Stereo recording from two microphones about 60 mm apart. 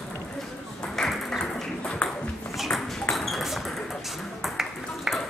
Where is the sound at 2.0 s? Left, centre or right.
Centre.